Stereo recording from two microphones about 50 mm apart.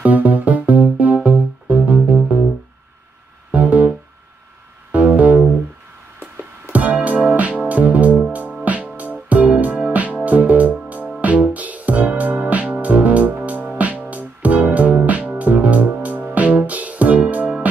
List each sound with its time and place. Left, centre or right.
0.0 s music: right
3.5 s music: right
4.9 s music: right
6.7 s music: right